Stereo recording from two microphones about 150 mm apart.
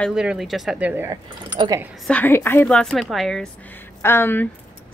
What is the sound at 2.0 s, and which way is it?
A woman's voice, 10° left (ahead or behind).